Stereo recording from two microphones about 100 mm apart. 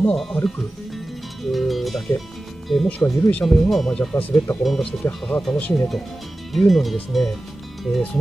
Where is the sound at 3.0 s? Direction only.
20° left (ahead or behind).